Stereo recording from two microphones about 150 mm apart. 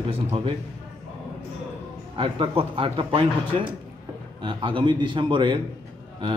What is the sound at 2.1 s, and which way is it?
A man's voice, 40° right (ahead or behind).